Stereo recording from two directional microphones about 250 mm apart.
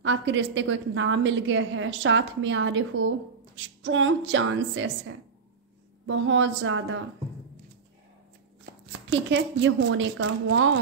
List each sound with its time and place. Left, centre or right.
0.0 s a woman's voice: right
9.1 s a woman's voice: right